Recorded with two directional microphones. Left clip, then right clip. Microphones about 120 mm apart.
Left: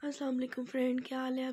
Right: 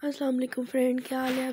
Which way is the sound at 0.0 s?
50° right (ahead or behind).